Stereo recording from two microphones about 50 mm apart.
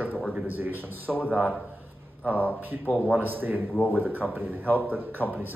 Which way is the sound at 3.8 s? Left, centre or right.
Left.